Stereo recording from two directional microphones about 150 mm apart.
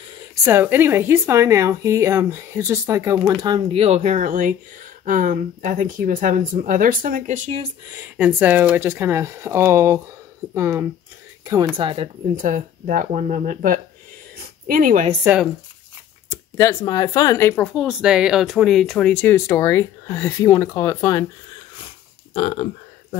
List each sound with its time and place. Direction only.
0.5 s speech: 15° right (ahead or behind); by 7.6 s 55° right (ahead or behind)
7.9 s speech: 10° right (ahead or behind)
11.7 s speech: 35° right (ahead or behind)
12.4 s speech: 65° right (ahead or behind)
14.3 s a sound: 70° right (ahead or behind)
16.5 s speech: 20° left (ahead or behind)
17.7 s speech: 5° right (ahead or behind); by 21.3 s 25° left (ahead or behind)
22.3 s speech: 55° left (ahead or behind)